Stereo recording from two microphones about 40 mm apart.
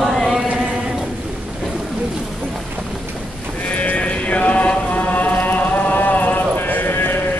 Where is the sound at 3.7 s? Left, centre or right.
Left.